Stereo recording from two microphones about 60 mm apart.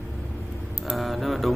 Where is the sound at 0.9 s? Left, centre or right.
Centre.